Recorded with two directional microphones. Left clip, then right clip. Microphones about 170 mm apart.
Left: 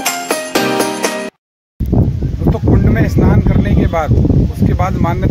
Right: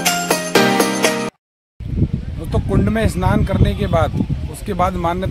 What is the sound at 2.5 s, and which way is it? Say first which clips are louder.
Speech: left 3 dB; 10° right (ahead or behind).